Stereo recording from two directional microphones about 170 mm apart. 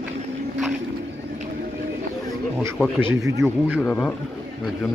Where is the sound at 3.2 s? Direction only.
20° right (ahead or behind).